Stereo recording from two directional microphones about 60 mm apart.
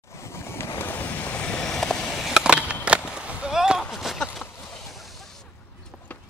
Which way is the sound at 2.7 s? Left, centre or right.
Centre.